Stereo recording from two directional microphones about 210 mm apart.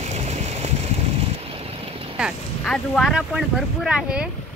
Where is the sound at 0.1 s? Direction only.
30° right (ahead or behind).